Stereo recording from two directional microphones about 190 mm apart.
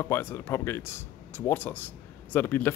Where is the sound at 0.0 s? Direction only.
10° left (ahead or behind).